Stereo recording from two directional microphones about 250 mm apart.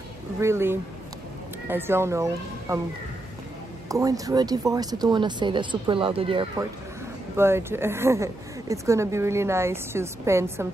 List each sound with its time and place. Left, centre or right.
0.4 s speech: centre
3.9 s speech: centre
7.3 s speech: centre